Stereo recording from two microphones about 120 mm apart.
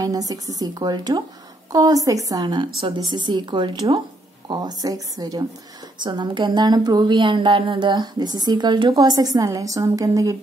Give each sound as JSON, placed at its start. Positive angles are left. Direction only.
{"t": 0.0, "sound": "a woman's voice", "side_deg": -30}